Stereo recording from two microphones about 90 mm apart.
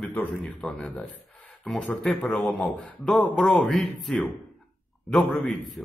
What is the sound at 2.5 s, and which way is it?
Speech, centre (ahead or behind).